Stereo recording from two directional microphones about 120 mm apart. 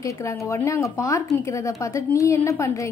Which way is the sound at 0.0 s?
25° left (ahead or behind).